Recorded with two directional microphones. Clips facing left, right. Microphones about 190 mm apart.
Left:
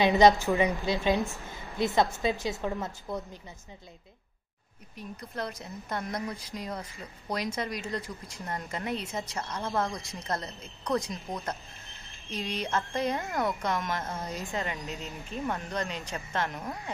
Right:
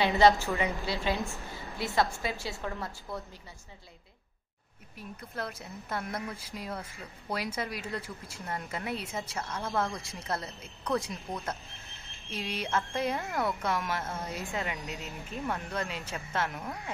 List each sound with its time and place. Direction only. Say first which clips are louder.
0.0 s a woman's voice: left 3 dB; 15° left (ahead or behind)
4.9 s a woman's voice: left 2 dB; 5° right (ahead or behind)
9.8 s a woman's voice: left 1 dB; 15° left (ahead or behind)
10.2 s speech: left 1 dB; 5° right (ahead or behind)
11.1 s a woman's voice: left 1 dB; 15° left (ahead or behind)
11.4 s a sound: left 1 dB; centre (ahead or behind)
12.4 s a woman's voice: left 1 dB; 5° right (ahead or behind)